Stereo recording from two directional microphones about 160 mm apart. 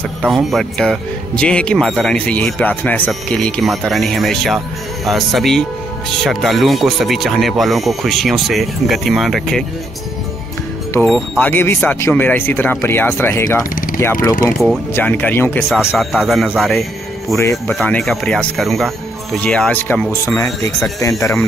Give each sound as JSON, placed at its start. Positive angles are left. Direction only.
{"t": 0.2, "sound": "speech", "side_deg": 0}
{"t": 11.3, "sound": "speech", "side_deg": 15}
{"t": 15.7, "sound": "speech", "side_deg": -5}
{"t": 17.4, "sound": "speech", "side_deg": 15}
{"t": 17.7, "sound": "speech", "side_deg": 5}